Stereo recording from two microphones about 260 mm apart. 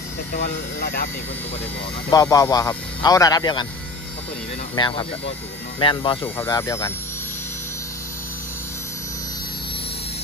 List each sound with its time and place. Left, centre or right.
0.3 s speech: left
2.0 s speech: centre
4.7 s speech: centre